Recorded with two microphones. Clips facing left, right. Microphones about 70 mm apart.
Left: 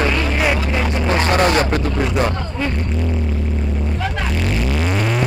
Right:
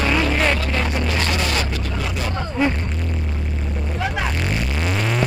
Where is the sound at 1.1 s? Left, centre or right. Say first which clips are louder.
Left 7 dB; left.